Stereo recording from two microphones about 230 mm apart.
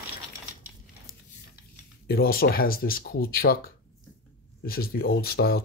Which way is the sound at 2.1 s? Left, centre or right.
Left.